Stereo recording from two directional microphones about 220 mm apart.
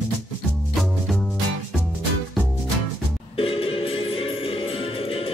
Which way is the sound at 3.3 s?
25° left (ahead or behind).